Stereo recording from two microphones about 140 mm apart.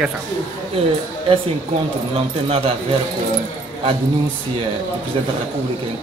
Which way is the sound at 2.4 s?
45° right (ahead or behind).